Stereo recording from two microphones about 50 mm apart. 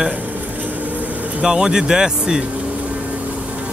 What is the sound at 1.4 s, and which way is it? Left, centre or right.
Speech, centre.